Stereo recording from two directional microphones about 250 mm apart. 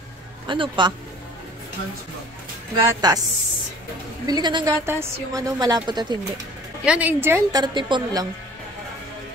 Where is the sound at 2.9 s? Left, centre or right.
Centre.